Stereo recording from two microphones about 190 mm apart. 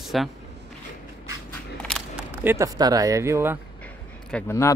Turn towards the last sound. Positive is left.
turn(degrees=15)  # may be behind; listen again after turning